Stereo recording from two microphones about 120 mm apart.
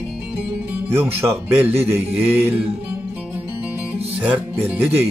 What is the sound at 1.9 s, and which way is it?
Mantra, 20° right (ahead or behind).